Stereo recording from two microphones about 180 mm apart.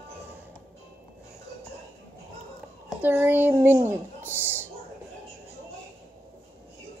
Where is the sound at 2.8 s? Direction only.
10° right (ahead or behind).